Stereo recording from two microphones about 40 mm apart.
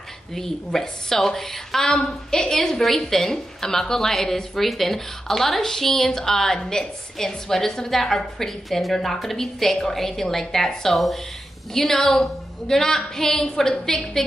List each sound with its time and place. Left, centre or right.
0.3 s a woman's voice: centre
1.9 s a woman's voice: centre
2.5 s a woman's voice: centre